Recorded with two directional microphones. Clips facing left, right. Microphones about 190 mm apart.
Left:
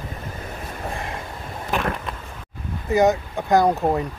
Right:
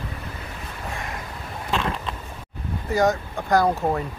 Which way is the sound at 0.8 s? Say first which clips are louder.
Left 2 dB; 30° left (ahead or behind).